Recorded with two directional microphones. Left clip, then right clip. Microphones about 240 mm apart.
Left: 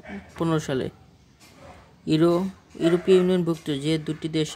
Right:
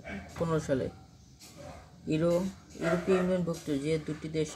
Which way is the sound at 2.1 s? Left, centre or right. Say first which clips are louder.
Left 7 dB; left.